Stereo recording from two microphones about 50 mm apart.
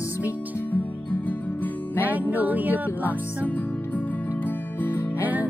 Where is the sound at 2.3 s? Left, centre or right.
Right.